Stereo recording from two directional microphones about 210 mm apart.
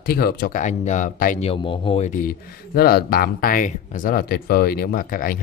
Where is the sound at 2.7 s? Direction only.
45° left (ahead or behind).